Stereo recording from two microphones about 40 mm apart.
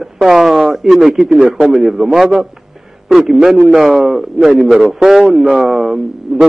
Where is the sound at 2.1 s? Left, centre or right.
Centre.